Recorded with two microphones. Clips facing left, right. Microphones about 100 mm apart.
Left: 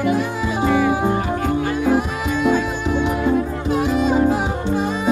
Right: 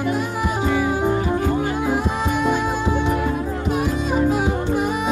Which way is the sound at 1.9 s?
20° right (ahead or behind).